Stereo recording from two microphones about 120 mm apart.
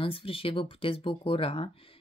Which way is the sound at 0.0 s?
50° left (ahead or behind).